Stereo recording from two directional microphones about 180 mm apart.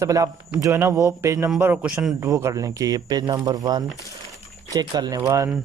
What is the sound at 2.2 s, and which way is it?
Speech, 15° right (ahead or behind).